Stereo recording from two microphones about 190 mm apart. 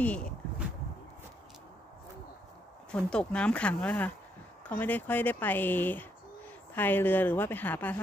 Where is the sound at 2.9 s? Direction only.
5° left (ahead or behind).